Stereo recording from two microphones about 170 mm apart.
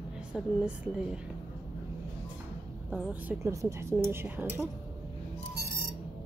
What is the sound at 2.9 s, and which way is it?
Speech, centre (ahead or behind).